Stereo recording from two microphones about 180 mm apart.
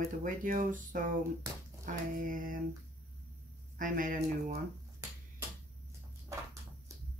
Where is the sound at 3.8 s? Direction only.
50° right (ahead or behind).